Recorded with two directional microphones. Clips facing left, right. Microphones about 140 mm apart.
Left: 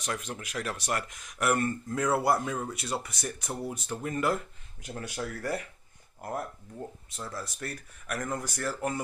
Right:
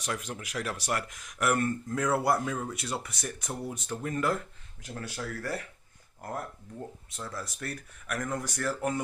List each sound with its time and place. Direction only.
0.0 s speech: 5° right (ahead or behind)
0.8 s speech: centre (ahead or behind)
6.8 s speech: 5° left (ahead or behind)